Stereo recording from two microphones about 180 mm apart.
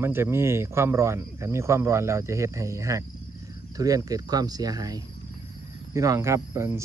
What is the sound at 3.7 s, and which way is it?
Cricket, 20° right (ahead or behind).